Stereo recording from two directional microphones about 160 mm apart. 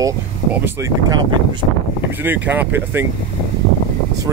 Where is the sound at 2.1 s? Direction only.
10° right (ahead or behind).